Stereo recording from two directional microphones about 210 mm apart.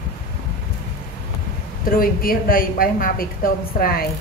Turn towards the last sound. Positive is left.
turn(degrees=45)  # may be behind; listen again after turning